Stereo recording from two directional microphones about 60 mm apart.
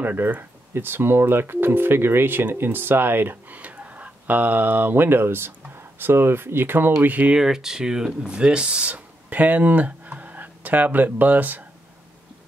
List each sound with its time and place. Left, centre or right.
0.0 s speech: right
7.3 s speech: centre; by 11.6 s right